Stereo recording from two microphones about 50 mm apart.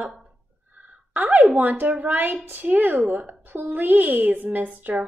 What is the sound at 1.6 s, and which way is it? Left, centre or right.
Speech, right.